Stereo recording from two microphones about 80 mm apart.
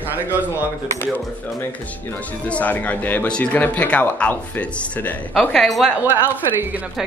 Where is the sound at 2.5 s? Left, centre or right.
Centre.